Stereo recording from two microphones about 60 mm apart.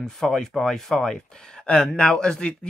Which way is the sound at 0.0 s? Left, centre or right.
Centre.